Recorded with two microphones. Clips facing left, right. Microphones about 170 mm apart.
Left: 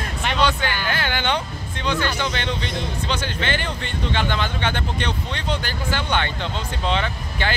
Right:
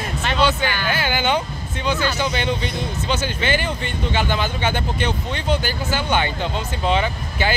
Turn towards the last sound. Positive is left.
turn(degrees=-10)  # may be behind; listen again after turning